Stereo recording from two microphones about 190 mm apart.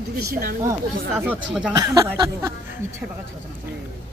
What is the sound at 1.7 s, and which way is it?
Speech, 20° right (ahead or behind).